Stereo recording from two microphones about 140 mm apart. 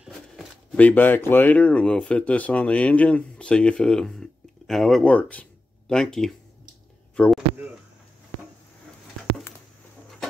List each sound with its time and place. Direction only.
0.0 s shuffling cards: 5° right (ahead or behind)
0.7 s speech: 10° left (ahead or behind)
7.2 s a sound: centre (ahead or behind)